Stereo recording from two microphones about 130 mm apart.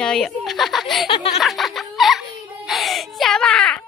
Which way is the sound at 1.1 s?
50° left (ahead or behind).